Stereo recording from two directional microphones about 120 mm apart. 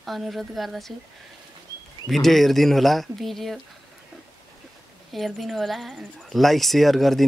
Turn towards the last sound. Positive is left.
turn(degrees=0)  # may be behind; listen again after turning